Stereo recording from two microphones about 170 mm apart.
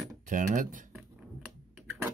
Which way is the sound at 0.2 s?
50° right (ahead or behind).